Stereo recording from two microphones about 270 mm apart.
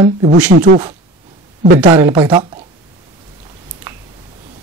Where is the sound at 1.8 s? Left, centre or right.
Centre.